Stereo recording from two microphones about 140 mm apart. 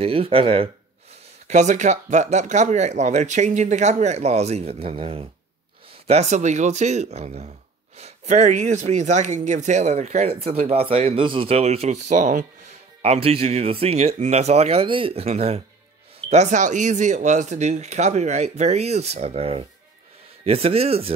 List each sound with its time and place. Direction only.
0.0 s speech: 40° right (ahead or behind)
1.5 s speech: 60° right (ahead or behind); by 5.2 s 40° right (ahead or behind)
6.0 s speech: 55° right (ahead or behind)
13.0 s speech: 45° right (ahead or behind)